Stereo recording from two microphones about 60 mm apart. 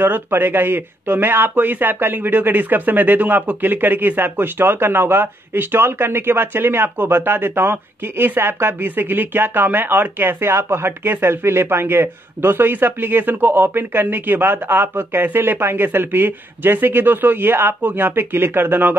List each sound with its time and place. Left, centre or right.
0.0 s speech: right